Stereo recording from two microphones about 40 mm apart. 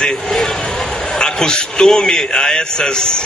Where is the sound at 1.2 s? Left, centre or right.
Centre.